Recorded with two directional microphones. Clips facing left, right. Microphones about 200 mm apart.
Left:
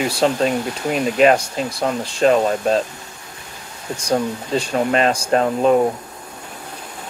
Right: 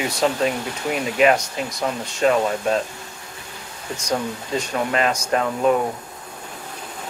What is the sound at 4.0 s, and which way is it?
Speech, 30° left (ahead or behind).